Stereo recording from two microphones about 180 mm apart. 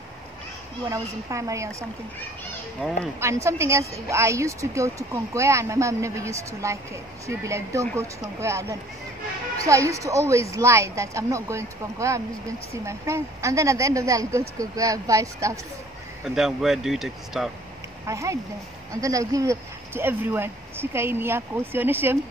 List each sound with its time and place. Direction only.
0.8 s speech: 15° right (ahead or behind)
2.8 s speech: 5° left (ahead or behind)
3.2 s speech: 15° right (ahead or behind)
16.3 s speech: centre (ahead or behind)
18.0 s speech: 15° right (ahead or behind)